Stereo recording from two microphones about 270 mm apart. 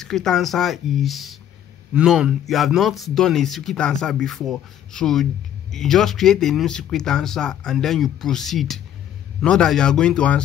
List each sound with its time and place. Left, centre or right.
0.0 s speech: centre